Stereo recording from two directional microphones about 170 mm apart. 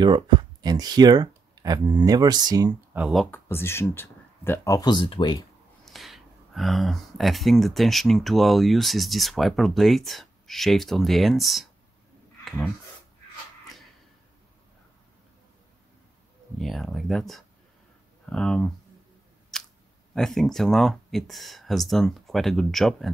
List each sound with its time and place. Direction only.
0.0 s speech: 25° right (ahead or behind)
3.0 s speech: centre (ahead or behind)
3.3 s speech: 15° left (ahead or behind)
5.9 s speech: centre (ahead or behind)
16.5 s speech: centre (ahead or behind)
19.5 s scissors: 5° left (ahead or behind)
20.2 s speech: centre (ahead or behind)